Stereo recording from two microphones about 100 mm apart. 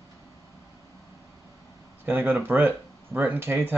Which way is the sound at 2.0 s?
20° right (ahead or behind).